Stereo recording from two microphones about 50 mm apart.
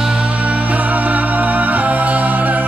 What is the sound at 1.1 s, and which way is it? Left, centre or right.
Music, right.